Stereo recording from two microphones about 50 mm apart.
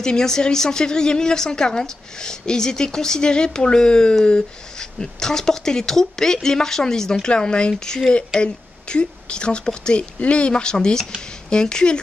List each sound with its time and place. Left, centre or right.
0.0 s a woman's voice: centre